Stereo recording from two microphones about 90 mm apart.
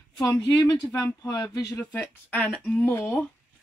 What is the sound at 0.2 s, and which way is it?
Speech, 45° left (ahead or behind).